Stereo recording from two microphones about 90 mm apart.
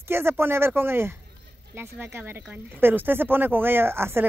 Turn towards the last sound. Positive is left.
turn(degrees=-25)  # may be behind; listen again after turning